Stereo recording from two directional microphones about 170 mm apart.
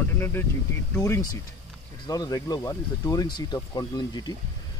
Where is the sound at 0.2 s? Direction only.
15° left (ahead or behind).